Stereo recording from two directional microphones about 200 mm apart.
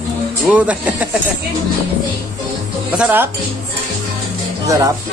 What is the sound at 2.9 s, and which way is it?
Speech, 5° right (ahead or behind).